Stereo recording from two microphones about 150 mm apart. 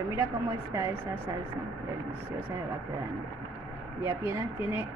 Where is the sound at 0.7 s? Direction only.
20° right (ahead or behind).